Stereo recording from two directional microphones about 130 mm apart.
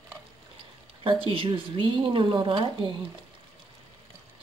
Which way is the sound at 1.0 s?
40° right (ahead or behind).